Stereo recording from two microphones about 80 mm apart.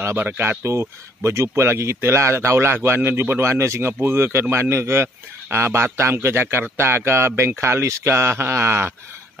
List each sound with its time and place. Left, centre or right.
0.0 s speech: right